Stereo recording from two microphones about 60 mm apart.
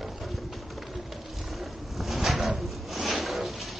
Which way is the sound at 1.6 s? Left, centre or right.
Centre.